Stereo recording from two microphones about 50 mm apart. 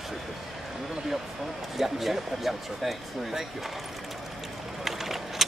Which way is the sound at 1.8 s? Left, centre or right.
Centre.